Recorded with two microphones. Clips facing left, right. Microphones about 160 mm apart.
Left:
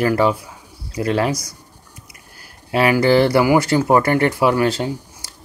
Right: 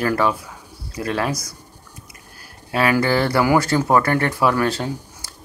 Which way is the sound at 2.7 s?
20° left (ahead or behind).